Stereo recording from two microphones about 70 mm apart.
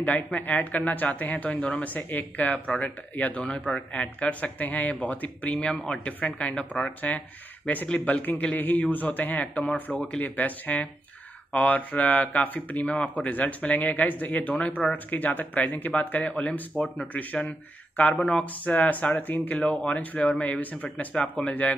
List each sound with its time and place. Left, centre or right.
0.0 s speech: left
18.1 s speech: centre
18.4 s speech: left